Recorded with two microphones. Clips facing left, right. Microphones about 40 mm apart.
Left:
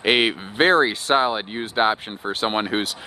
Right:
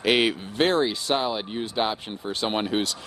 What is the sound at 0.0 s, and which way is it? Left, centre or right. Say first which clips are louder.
Speech: left 2 dB; left.